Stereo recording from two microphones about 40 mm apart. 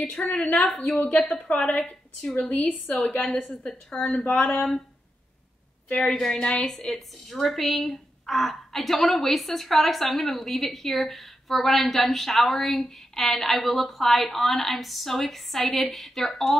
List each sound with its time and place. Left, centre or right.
0.0 s a woman's voice: left
1.7 s a woman's voice: left
4.0 s speech: left
4.4 s speech: centre
5.9 s a woman's voice: centre
7.0 s a woman's voice: centre